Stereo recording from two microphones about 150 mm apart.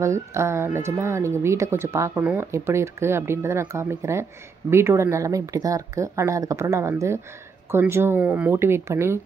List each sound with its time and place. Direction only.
0.0 s speech: 20° right (ahead or behind)